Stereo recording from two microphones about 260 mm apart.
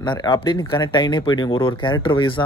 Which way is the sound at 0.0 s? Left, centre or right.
Centre.